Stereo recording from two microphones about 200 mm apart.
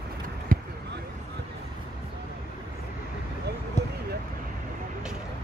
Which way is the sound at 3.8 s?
35° left (ahead or behind).